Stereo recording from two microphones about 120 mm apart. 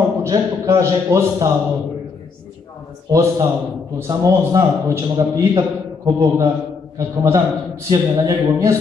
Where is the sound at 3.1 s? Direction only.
25° right (ahead or behind).